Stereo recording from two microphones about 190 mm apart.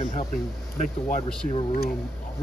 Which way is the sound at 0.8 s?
40° left (ahead or behind).